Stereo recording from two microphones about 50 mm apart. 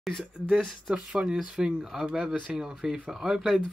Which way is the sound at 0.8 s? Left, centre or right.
Centre.